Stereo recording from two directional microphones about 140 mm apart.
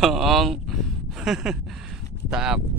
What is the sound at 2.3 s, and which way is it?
Speech, 5° right (ahead or behind).